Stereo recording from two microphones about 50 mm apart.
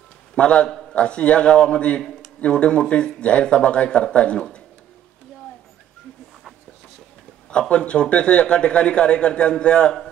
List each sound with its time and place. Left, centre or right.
0.4 s a man's voice: centre
7.5 s a man's voice: left